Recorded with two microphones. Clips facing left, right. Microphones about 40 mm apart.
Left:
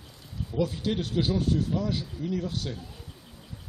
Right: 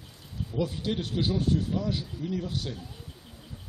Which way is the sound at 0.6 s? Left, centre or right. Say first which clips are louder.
Left 2 dB; centre.